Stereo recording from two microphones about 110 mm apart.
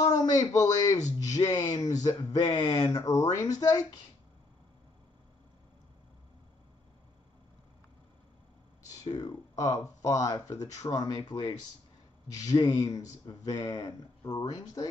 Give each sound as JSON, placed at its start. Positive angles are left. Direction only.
{"t": 0.1, "sound": "a man's voice", "side_deg": 35}
{"t": 9.0, "sound": "speech", "side_deg": 35}
{"t": 12.3, "sound": "speech", "side_deg": 35}